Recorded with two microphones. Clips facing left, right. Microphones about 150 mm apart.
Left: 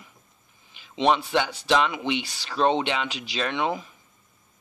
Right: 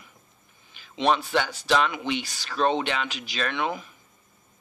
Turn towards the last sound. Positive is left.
turn(degrees=25)  # may be behind; listen again after turning